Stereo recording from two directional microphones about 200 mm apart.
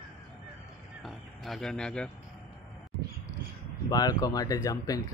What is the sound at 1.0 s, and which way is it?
Speech, centre (ahead or behind).